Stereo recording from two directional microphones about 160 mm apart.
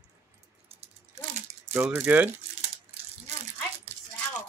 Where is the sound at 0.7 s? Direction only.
40° right (ahead or behind).